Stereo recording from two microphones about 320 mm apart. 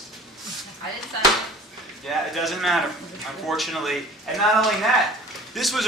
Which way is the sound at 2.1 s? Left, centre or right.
Centre.